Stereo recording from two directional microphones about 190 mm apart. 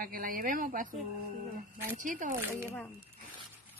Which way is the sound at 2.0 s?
40° right (ahead or behind).